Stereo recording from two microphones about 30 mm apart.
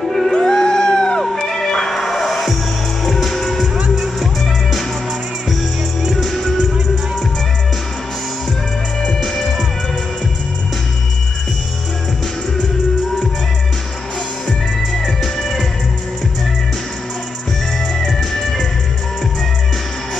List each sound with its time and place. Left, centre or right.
0.0 s cat: centre
0.4 s music: left
1.9 s music: centre
3.9 s music: centre
6.2 s music: centre
9.2 s music: centre
17.9 s music: centre